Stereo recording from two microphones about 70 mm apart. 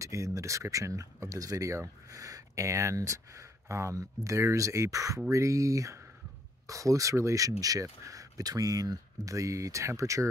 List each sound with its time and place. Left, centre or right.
0.0 s speech: right
9.3 s speech: right